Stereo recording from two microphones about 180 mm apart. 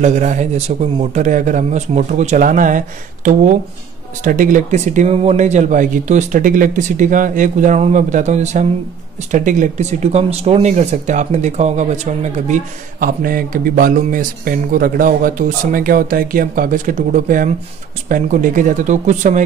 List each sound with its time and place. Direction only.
0.0 s a man's voice: 40° right (ahead or behind)
4.2 s speech: 45° right (ahead or behind)